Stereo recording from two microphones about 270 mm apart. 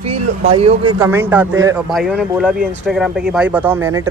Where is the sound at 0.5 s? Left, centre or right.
Right.